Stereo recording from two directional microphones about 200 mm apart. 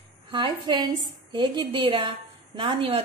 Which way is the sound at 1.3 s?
25° right (ahead or behind).